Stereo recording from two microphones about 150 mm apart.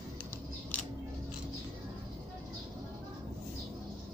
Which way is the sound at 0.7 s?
10° left (ahead or behind).